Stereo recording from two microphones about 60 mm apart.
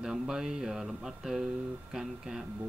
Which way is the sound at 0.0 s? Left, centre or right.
Centre.